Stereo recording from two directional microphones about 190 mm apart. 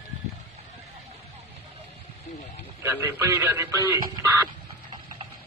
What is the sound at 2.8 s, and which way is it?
Speech, 10° right (ahead or behind).